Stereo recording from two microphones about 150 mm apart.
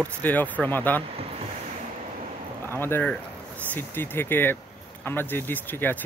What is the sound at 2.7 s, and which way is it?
Speech, 15° left (ahead or behind).